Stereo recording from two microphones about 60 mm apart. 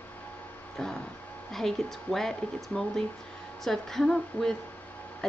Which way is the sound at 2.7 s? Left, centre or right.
Left.